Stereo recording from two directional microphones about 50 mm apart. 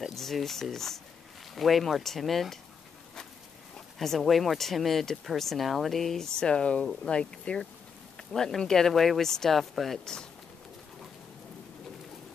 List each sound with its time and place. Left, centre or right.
0.1 s speech: centre
4.0 s speech: centre
8.3 s speech: centre